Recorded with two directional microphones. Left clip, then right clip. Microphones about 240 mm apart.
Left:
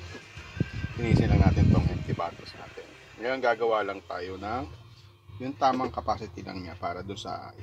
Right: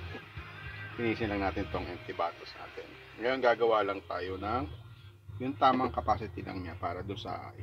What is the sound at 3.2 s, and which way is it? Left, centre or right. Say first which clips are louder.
Speech: left 1 dB; left.